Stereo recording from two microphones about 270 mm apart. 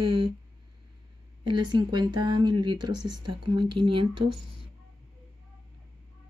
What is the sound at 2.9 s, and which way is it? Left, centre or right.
Speech, right.